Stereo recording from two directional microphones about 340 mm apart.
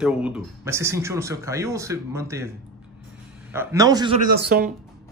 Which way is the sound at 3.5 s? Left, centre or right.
Centre.